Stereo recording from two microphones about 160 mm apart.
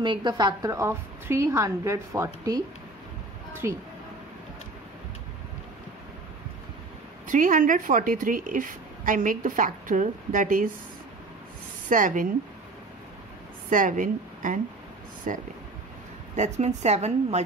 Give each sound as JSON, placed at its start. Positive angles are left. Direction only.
{"t": 0.0, "sound": "a woman's voice", "side_deg": -30}
{"t": 3.6, "sound": "a woman's voice", "side_deg": -20}
{"t": 7.2, "sound": "a woman's voice", "side_deg": -55}
{"t": 11.9, "sound": "a woman's voice", "side_deg": -55}
{"t": 13.7, "sound": "a woman's voice", "side_deg": -55}